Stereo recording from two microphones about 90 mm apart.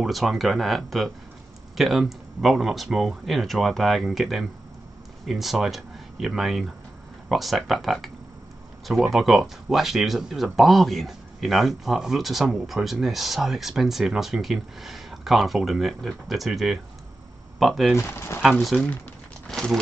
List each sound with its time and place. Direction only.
0.0 s speech: centre (ahead or behind)
9.1 s speech: 5° right (ahead or behind)
17.9 s speech: 30° left (ahead or behind)
18.4 s speech: centre (ahead or behind)
19.4 s a sound: 5° left (ahead or behind)